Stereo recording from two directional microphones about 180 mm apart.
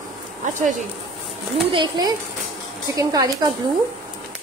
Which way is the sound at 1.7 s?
25° right (ahead or behind).